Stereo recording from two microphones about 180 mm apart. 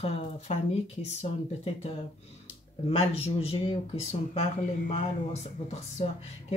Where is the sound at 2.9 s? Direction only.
35° left (ahead or behind).